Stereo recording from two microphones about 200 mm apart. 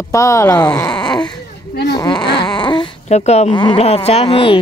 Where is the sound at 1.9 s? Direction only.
20° left (ahead or behind).